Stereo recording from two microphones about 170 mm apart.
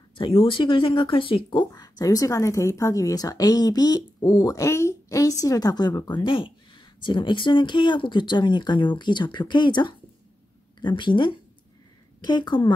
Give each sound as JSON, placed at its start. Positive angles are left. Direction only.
{"t": 0.2, "sound": "speech", "side_deg": 30}